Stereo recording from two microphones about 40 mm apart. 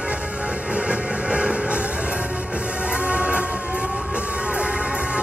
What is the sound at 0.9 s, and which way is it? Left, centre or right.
Music, right.